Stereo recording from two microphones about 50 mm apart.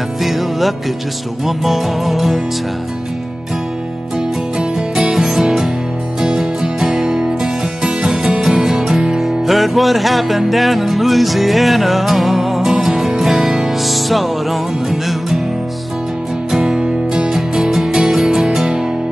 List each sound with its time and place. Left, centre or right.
0.2 s music: centre
4.6 s music: centre
16.5 s music: centre